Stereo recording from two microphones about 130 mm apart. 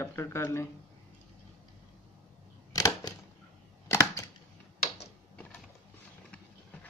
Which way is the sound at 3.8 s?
20° left (ahead or behind).